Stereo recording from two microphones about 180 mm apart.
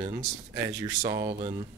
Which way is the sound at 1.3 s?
30° right (ahead or behind).